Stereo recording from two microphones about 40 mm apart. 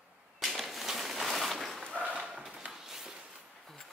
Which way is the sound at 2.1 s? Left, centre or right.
Right.